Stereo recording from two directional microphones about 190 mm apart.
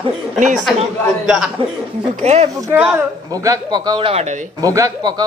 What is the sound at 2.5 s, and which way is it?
A woman's voice, 15° right (ahead or behind).